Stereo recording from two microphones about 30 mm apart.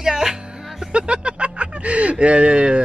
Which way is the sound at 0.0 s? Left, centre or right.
Centre.